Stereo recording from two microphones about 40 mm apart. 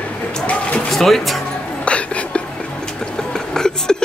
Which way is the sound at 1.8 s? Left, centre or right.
Left.